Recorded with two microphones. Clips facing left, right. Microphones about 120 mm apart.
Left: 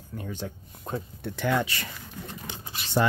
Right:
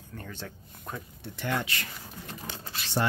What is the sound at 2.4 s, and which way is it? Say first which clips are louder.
Pigeon: even; 15° left (ahead or behind).